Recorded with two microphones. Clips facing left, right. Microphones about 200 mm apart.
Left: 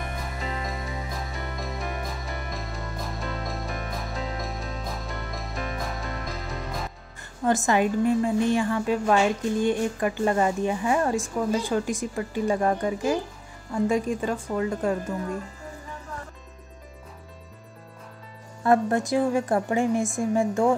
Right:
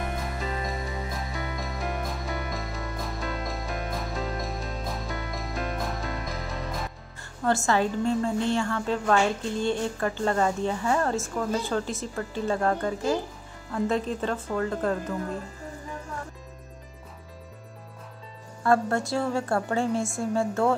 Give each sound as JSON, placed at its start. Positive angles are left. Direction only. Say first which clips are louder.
{"t": 0.7, "sound": "music", "louder": "right 1 dB", "side_deg": 0}
{"t": 7.4, "sound": "a woman's voice", "louder": "left 2 dB", "side_deg": 15}
{"t": 18.6, "sound": "a woman's voice", "louder": "left 2 dB", "side_deg": 20}